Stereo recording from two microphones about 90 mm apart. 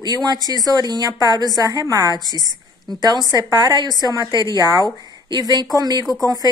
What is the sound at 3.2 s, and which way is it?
A woman's voice, 45° right (ahead or behind).